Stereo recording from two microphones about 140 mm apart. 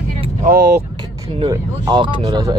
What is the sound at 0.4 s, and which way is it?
Speech, 90° right.